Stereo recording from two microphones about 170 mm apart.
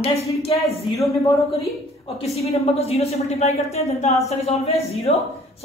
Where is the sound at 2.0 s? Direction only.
40° left (ahead or behind).